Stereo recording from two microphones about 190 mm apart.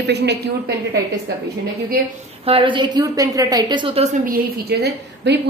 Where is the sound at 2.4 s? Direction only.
25° right (ahead or behind).